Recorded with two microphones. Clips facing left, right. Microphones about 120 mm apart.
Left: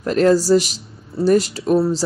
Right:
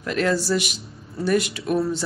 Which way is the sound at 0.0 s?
40° left (ahead or behind).